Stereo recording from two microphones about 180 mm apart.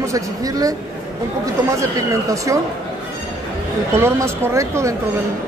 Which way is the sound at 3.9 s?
15° right (ahead or behind).